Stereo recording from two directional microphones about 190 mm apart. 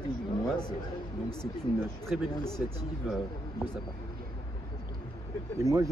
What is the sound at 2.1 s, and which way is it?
Speech, 5° right (ahead or behind).